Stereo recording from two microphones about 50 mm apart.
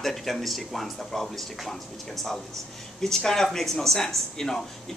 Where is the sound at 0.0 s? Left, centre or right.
Centre.